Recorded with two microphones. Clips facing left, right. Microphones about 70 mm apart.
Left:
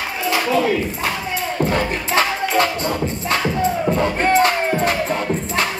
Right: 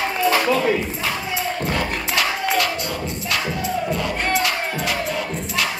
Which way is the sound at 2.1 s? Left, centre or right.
Left.